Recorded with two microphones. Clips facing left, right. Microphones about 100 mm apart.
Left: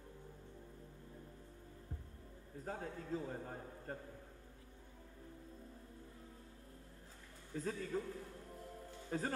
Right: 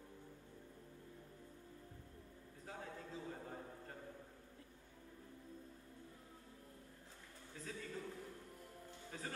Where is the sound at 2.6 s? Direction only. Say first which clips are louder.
Left 7 dB; 45° left (ahead or behind).